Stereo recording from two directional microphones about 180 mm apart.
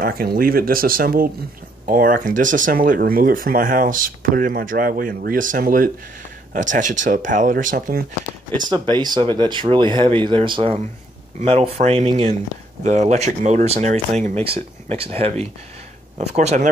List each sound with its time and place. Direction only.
0.0 s speech: 55° right (ahead or behind)
8.5 s speech: 25° right (ahead or behind)